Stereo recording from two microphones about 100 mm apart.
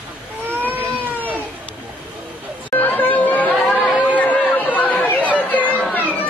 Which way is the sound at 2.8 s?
20° left (ahead or behind).